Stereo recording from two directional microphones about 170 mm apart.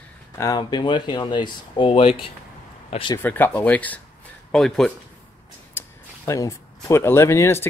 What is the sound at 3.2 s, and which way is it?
Speech, 10° left (ahead or behind).